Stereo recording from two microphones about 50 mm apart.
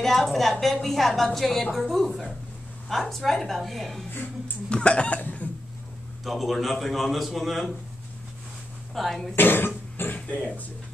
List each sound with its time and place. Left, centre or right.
0.0 s a woman's voice: centre
4.6 s chicken: left
6.2 s a woman's voice: centre
8.9 s a woman's voice: centre
9.3 s cough: left
10.1 s chicken: left